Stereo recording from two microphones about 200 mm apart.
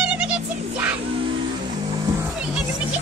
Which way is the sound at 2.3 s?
5° right (ahead or behind).